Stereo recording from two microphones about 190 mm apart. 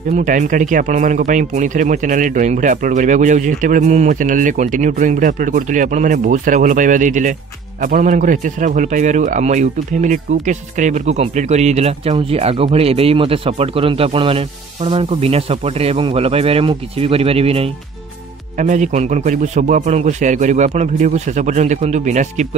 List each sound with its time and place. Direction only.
0.1 s a man's voice: 40° right (ahead or behind)